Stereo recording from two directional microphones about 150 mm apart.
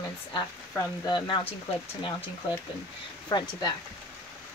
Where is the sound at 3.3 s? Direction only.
25° left (ahead or behind).